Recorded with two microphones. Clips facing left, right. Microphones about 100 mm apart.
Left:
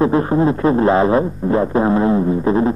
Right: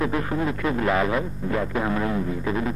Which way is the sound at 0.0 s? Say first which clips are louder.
Left 10 dB; 30° left (ahead or behind).